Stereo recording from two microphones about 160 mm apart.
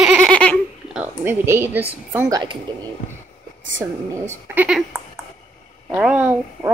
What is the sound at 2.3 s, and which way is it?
Speech, 30° right (ahead or behind).